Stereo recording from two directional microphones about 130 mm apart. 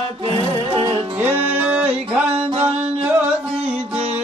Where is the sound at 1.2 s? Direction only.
15° right (ahead or behind).